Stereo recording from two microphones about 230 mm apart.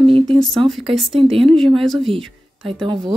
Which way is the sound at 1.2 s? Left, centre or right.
Right.